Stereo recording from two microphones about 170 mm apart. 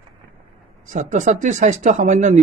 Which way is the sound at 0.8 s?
45° right (ahead or behind).